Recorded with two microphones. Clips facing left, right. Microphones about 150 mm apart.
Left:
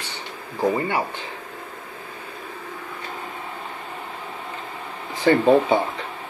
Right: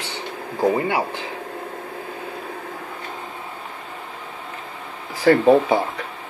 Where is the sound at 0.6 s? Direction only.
10° right (ahead or behind).